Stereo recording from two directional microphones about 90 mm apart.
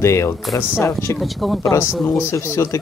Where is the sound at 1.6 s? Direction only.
30° left (ahead or behind).